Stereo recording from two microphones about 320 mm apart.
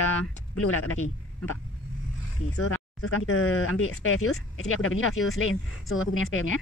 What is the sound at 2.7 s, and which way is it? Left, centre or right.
Speech, left.